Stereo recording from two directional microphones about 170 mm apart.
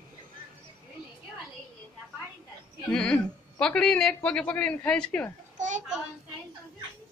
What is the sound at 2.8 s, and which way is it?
A man's voice, 5° left (ahead or behind).